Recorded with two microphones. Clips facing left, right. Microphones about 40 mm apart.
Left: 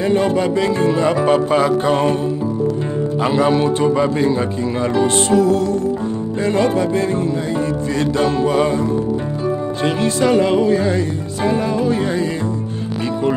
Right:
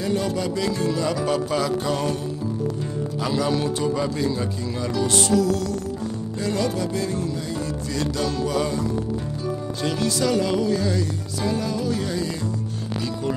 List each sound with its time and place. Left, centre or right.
0.0 s music: left
3.3 s music: left
9.8 s music: left